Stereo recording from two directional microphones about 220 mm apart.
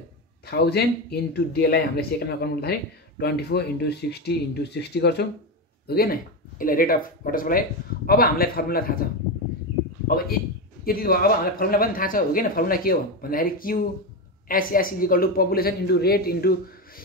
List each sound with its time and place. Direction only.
0.5 s a man's voice: 45° left (ahead or behind)
10.0 s a man's voice: 40° left (ahead or behind)